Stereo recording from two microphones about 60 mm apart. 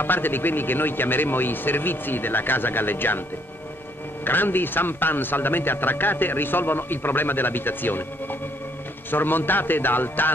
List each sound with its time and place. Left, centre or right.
0.0 s a man's voice: left
4.2 s a man's voice: left